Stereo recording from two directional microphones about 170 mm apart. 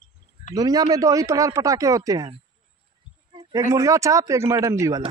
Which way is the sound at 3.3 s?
20° right (ahead or behind).